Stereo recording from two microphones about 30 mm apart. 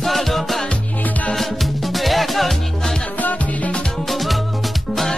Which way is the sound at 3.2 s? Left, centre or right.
Left.